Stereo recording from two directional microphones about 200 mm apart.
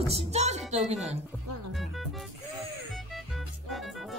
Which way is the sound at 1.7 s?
Centre (ahead or behind).